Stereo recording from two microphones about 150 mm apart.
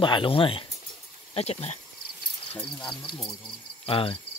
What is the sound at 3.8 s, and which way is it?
Speech, 40° left (ahead or behind).